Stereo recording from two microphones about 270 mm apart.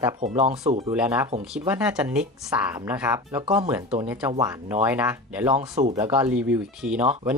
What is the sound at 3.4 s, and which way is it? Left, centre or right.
Speech, right.